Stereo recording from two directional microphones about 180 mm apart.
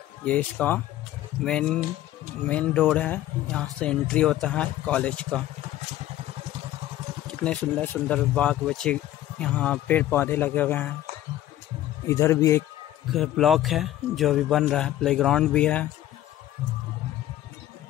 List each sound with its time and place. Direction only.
0.2 s a man's voice: 10° left (ahead or behind)
7.2 s speech: 5° left (ahead or behind)
12.1 s speech: 15° left (ahead or behind)
13.1 s a man's voice: centre (ahead or behind)